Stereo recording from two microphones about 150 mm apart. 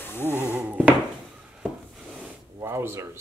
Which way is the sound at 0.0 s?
15° left (ahead or behind).